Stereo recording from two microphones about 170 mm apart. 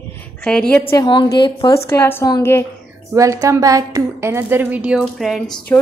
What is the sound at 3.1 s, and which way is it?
A woman's voice, 20° right (ahead or behind).